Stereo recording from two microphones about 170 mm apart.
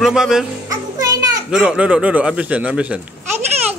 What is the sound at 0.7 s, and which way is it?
Music, 20° right (ahead or behind).